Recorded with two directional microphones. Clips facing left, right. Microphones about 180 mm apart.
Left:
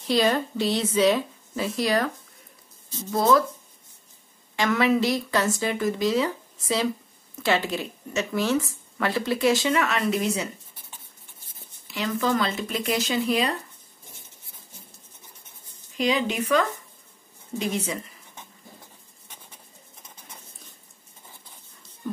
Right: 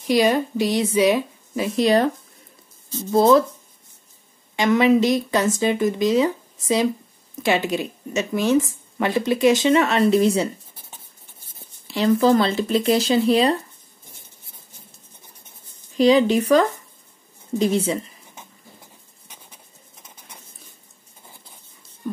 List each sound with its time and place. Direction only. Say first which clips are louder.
0.0 s a woman's voice: right 4 dB; 15° right (ahead or behind)
3.1 s speech: right 6 dB; 25° right (ahead or behind)
4.6 s speech: right 5 dB; 20° right (ahead or behind)
11.9 s speech: right 8 dB; 35° right (ahead or behind)
16.0 s speech: right 9 dB; 35° right (ahead or behind)